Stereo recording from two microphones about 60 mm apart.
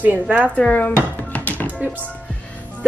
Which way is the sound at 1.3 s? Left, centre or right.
Left.